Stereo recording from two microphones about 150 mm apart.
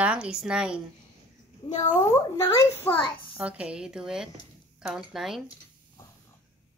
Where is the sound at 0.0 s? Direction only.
10° right (ahead or behind).